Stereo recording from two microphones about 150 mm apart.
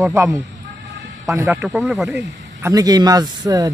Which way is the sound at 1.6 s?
5° right (ahead or behind).